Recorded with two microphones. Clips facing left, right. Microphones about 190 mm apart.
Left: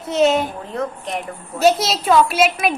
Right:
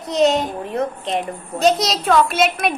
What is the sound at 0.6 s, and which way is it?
Speech, 20° right (ahead or behind).